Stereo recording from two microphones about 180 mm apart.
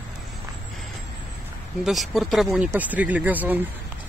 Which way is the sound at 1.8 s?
Centre (ahead or behind).